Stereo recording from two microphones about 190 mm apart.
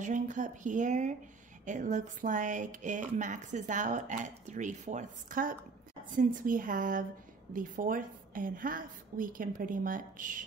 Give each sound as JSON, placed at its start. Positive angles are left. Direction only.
{"t": 0.0, "sound": "a woman's voice", "side_deg": -40}